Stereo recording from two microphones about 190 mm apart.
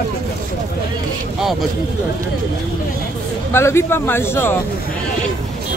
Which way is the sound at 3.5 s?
15° left (ahead or behind).